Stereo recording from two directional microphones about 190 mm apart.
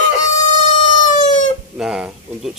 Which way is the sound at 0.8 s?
40° left (ahead or behind).